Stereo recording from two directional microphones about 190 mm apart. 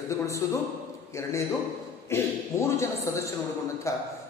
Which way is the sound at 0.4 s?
15° left (ahead or behind).